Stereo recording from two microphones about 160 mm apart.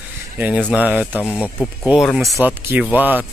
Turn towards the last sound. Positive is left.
turn(degrees=-10)  # may be behind; listen again after turning